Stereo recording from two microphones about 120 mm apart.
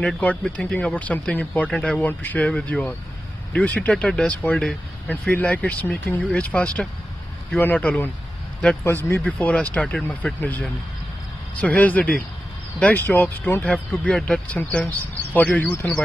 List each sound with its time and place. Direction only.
0.0 s speech: 10° left (ahead or behind)